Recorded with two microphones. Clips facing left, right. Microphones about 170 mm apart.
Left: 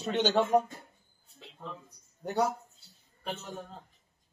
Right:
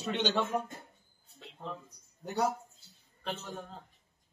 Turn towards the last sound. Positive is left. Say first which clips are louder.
# left 1 dB
turn(degrees=10)  # may be behind; listen again after turning